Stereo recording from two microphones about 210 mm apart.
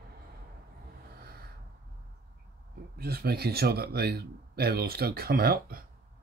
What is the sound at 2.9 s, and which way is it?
Speech, 50° right (ahead or behind).